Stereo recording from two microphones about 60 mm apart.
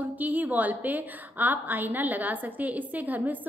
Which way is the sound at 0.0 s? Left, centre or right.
Right.